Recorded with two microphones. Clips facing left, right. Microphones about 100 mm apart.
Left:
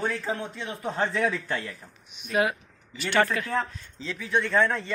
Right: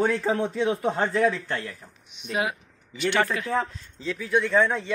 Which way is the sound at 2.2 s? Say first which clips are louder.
Left 2 dB; 25° right (ahead or behind).